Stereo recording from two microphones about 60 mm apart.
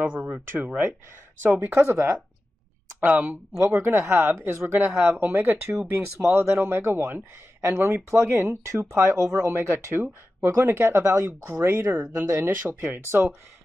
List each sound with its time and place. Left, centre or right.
0.0 s speech: right
3.0 s speech: right
3.5 s speech: right
4.1 s speech: right
7.0 s speech: right
7.6 s speech: right
11.0 s speech: right